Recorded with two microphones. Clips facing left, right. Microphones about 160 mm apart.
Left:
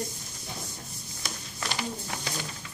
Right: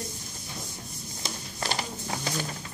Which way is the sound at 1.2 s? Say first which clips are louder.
Right 2 dB; 35° right (ahead or behind).